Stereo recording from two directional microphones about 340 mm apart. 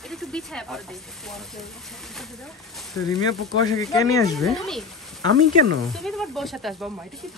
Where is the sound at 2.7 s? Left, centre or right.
Centre.